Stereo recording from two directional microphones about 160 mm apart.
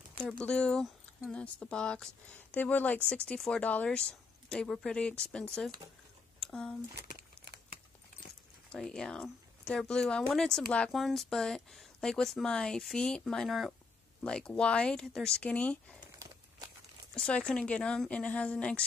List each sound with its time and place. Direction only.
0.4 s speech: 5° left (ahead or behind)
6.4 s a sound: 5° left (ahead or behind)
7.0 s crumpling: 80° right
8.7 s speech: 5° left (ahead or behind)
17.1 s speech: 5° left (ahead or behind)